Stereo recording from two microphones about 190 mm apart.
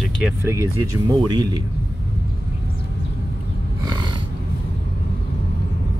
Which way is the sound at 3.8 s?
20° right (ahead or behind).